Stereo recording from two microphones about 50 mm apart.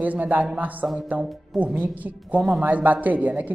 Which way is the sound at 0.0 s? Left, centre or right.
Right.